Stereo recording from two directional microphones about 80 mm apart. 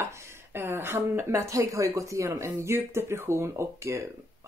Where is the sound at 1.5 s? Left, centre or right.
Right.